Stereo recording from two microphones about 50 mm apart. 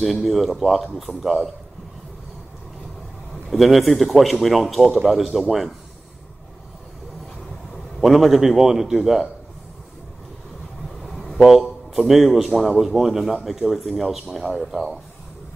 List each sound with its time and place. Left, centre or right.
0.0 s a man's voice: centre
3.4 s a man's voice: centre
8.0 s a man's voice: centre
11.1 s a sound: centre
11.4 s a man's voice: centre